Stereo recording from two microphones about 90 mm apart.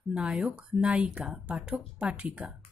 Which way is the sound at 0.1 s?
10° right (ahead or behind).